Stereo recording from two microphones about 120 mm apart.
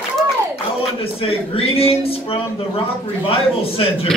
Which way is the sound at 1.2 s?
55° left (ahead or behind).